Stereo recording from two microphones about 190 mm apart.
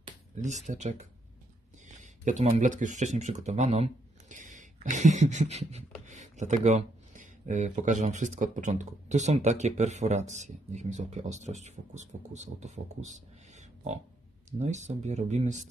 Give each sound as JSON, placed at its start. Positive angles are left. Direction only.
{"t": 0.4, "sound": "speech", "side_deg": -40}